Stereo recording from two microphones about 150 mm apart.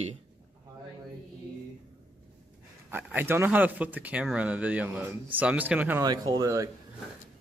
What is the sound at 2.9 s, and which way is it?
Speech, 10° right (ahead or behind).